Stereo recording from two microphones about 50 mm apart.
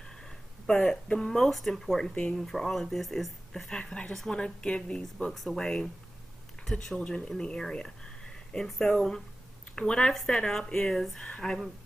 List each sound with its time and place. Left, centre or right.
0.0 s a sound: centre
0.8 s a woman's voice: centre
3.8 s speech: left
5.3 s speech: centre
5.6 s a woman's voice: centre